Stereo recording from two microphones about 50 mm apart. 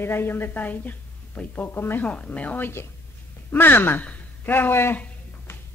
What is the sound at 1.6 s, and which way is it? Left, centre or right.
Speech, left.